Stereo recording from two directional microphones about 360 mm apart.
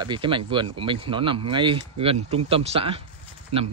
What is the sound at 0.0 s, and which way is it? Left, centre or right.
A man's voice, centre.